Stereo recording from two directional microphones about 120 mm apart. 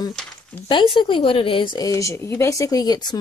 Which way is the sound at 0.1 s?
5° left (ahead or behind).